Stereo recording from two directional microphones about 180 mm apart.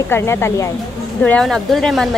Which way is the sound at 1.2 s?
5° left (ahead or behind).